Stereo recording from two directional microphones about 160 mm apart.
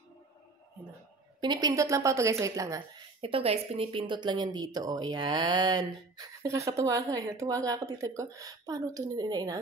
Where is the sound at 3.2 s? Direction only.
35° right (ahead or behind).